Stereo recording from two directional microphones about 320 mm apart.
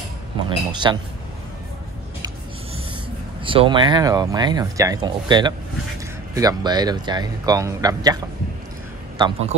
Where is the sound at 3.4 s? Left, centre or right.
Centre.